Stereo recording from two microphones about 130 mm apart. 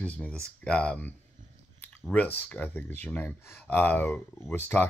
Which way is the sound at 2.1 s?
10° left (ahead or behind).